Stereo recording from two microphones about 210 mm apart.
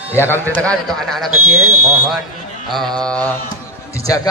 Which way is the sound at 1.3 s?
90° right.